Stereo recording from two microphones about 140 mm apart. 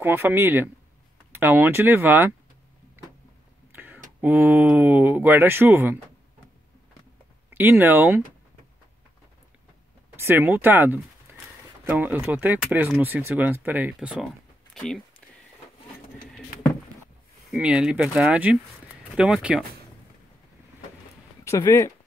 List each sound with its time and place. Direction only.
0.0 s speech: 15° right (ahead or behind)
3.7 s a sound: 15° right (ahead or behind)
4.2 s speech: 15° right (ahead or behind)
7.5 s speech: 15° right (ahead or behind)
10.1 s a sound: 15° right (ahead or behind)
11.9 s speech: 10° right (ahead or behind)
13.9 s a sound: centre (ahead or behind)
17.5 s speech: 10° right (ahead or behind)
21.5 s speech: 20° left (ahead or behind)